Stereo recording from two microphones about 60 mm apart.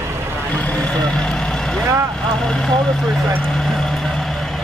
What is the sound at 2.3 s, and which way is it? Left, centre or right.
Speech, centre.